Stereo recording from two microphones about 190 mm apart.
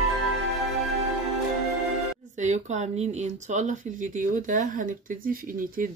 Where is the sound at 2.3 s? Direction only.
40° right (ahead or behind).